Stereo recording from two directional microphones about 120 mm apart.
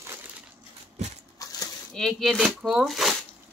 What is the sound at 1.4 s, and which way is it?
Dog, 30° left (ahead or behind).